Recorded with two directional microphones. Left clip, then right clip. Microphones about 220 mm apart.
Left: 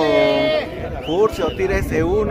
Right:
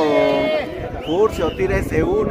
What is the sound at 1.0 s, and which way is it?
Speech, 5° left (ahead or behind).